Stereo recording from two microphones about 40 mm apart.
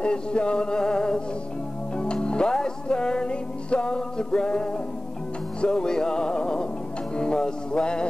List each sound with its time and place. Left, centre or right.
0.0 s music: left